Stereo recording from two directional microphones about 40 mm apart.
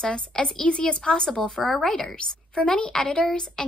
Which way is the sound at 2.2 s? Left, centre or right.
Left.